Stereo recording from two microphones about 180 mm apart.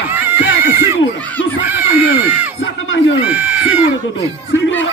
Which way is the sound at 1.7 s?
10° right (ahead or behind).